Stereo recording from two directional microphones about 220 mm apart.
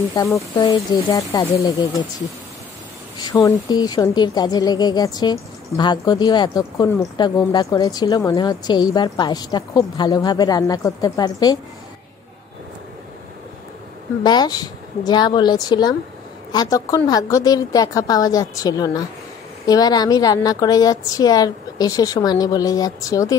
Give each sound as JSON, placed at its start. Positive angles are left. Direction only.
{"t": 0.1, "sound": "a woman's voice", "side_deg": 15}
{"t": 3.2, "sound": "speech", "side_deg": 15}
{"t": 14.2, "sound": "a woman's voice", "side_deg": 20}